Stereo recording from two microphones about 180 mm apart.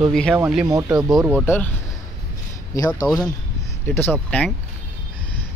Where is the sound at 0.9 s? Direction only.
5° right (ahead or behind).